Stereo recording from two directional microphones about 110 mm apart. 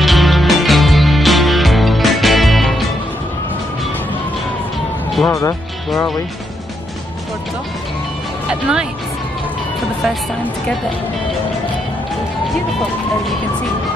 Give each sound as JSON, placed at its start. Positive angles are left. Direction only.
{"t": 0.0, "sound": "music", "side_deg": 0}
{"t": 5.3, "sound": "speech", "side_deg": 30}
{"t": 8.5, "sound": "speech", "side_deg": -10}